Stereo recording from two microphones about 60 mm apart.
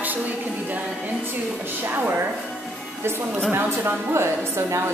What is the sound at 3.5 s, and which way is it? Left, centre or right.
A woman's voice, right.